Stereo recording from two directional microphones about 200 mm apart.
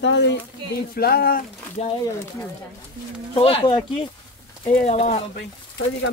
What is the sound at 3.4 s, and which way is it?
Speech, 30° left (ahead or behind).